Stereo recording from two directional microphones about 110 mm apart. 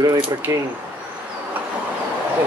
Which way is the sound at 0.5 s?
25° right (ahead or behind).